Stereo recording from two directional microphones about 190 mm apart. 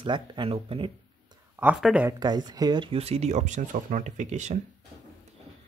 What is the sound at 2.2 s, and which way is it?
Speech, 20° right (ahead or behind).